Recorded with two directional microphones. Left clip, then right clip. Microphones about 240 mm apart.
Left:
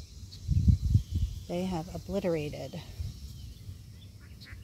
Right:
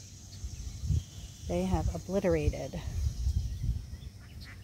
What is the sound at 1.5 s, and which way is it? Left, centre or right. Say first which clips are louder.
Speech: right 2 dB; centre.